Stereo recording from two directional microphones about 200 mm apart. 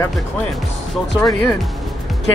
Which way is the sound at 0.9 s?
Centre (ahead or behind).